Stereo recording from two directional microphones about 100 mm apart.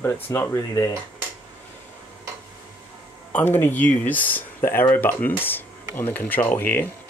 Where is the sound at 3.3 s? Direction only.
20° left (ahead or behind).